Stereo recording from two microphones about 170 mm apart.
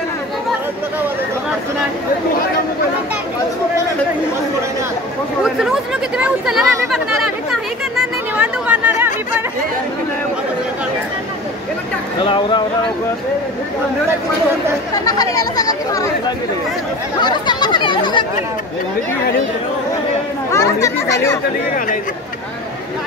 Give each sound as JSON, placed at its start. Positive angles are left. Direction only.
{"t": 5.4, "sound": "chatter", "side_deg": -5}
{"t": 7.9, "sound": "chatter", "side_deg": -5}
{"t": 12.2, "sound": "speech", "side_deg": 30}
{"t": 15.0, "sound": "speech", "side_deg": 20}
{"t": 20.5, "sound": "speech", "side_deg": 20}